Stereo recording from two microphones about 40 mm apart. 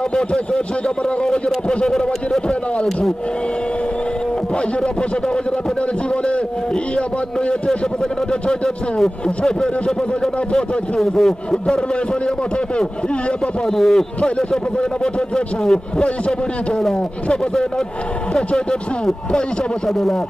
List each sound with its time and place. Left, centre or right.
0.1 s a man's voice: left
8.3 s a man's voice: left
11.0 s a man's voice: centre
13.7 s a man's voice: centre
14.2 s a man's voice: left
18.3 s a man's voice: left
19.9 s speech: centre